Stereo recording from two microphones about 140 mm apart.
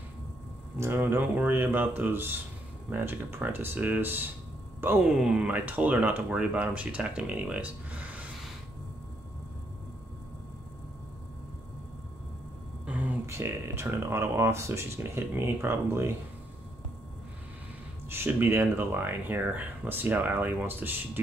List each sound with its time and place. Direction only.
0.7 s speech: 15° right (ahead or behind)
5.0 s speech: 5° right (ahead or behind)
12.8 s speech: 10° right (ahead or behind)
18.1 s speech: 15° right (ahead or behind)